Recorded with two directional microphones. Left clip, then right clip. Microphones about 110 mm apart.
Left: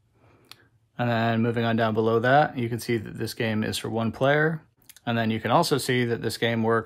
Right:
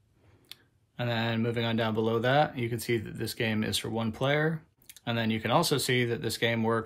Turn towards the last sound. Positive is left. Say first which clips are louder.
# left 4 dB
turn(degrees=40)  # may be behind; listen again after turning